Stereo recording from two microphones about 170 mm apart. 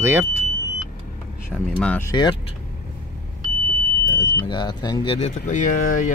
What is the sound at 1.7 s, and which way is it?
Speech, 10° left (ahead or behind).